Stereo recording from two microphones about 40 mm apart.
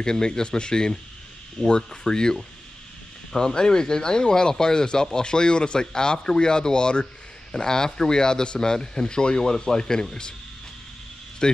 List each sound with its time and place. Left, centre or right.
0.0 s speech: centre
3.3 s speech: centre
11.4 s speech: left